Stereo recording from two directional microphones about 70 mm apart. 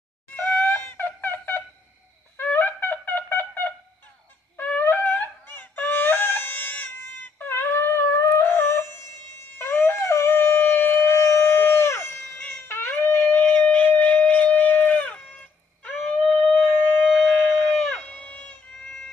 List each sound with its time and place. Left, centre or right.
0.4 s wind instrument: left
9.6 s dog: left
10.0 s shofar: left; by 17.1 s centre
17.2 s a sound: centre
18.0 s shofar: left